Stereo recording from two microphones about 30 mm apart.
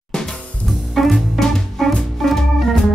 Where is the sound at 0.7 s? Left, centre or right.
Centre.